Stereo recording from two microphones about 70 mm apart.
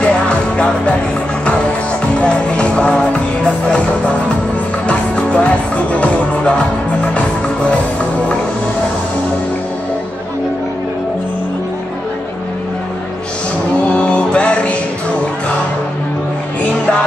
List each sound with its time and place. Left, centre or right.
0.0 s music: centre
2.1 s music: centre
13.9 s music: centre